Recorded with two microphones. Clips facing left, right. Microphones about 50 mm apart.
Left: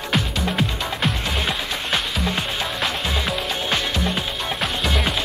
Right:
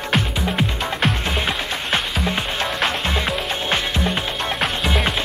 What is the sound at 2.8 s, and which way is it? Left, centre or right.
Music, right.